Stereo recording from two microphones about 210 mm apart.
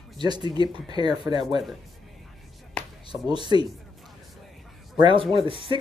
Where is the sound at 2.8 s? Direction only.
5° left (ahead or behind).